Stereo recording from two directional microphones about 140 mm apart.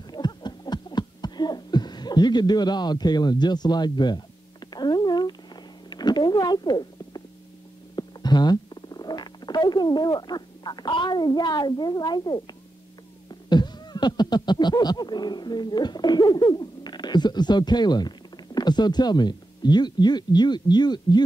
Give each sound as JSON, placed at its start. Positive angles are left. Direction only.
{"t": 0.1, "sound": "a sound", "side_deg": 30}
{"t": 7.9, "sound": "stomach rumble", "side_deg": 30}
{"t": 13.3, "sound": "beatboxing", "side_deg": 30}